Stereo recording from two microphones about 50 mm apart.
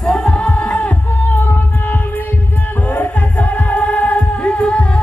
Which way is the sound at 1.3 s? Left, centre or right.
Left.